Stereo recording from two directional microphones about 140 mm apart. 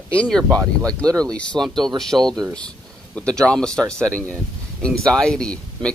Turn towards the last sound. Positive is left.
turn(degrees=5)  # may be behind; listen again after turning